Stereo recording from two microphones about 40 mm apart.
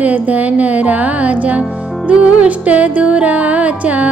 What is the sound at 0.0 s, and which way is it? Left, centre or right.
Music, right.